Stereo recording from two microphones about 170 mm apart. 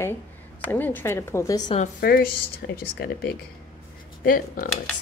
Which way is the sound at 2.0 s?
65° left (ahead or behind).